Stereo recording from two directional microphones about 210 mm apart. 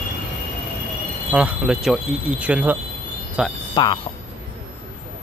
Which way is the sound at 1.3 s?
5° right (ahead or behind).